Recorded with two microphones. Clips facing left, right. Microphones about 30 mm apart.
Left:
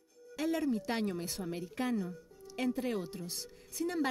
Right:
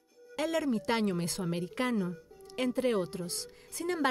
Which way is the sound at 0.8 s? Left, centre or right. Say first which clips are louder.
Right 5 dB; right.